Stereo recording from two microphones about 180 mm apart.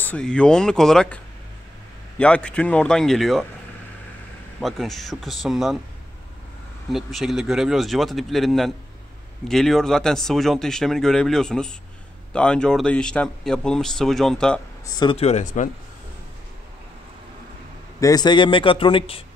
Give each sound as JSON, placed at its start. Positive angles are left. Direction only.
{"t": 0.0, "sound": "speech", "side_deg": 5}
{"t": 4.6, "sound": "speech", "side_deg": 0}
{"t": 6.9, "sound": "speech", "side_deg": 0}
{"t": 15.0, "sound": "speech", "side_deg": 30}
{"t": 18.0, "sound": "a man's voice", "side_deg": 20}